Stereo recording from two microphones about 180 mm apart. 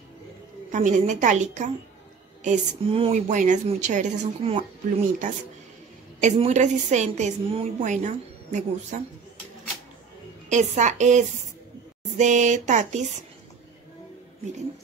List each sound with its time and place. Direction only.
0.7 s a woman's voice: 45° right (ahead or behind)
6.2 s a woman's voice: 40° right (ahead or behind)
10.5 s a woman's voice: 40° right (ahead or behind)